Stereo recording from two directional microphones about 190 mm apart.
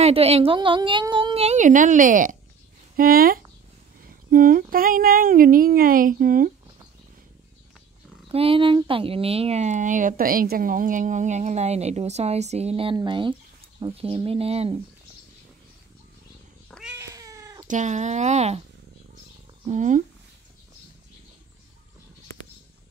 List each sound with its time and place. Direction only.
0.0 s speech: 30° right (ahead or behind)
8.3 s speech: 30° right (ahead or behind)
16.9 s cat: 15° right (ahead or behind)
17.6 s speech: 40° right (ahead or behind)
19.6 s speech: 40° right (ahead or behind)